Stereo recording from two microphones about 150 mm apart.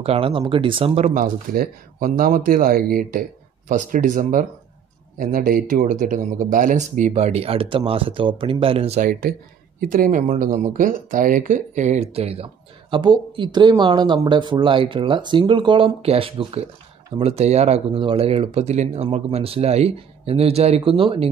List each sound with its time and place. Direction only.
0.0 s speech: 40° right (ahead or behind)
1.1 s speech: 70° right (ahead or behind); by 9.0 s 40° right (ahead or behind)
9.3 s speech: 80° right
9.8 s speech: 65° right (ahead or behind); by 12.4 s 40° right (ahead or behind)
12.9 s speech: 30° right (ahead or behind)